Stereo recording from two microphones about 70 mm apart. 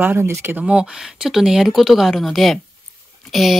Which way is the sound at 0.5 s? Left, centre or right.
Centre.